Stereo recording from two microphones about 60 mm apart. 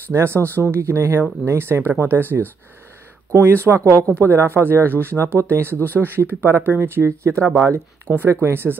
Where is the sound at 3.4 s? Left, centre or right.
Right.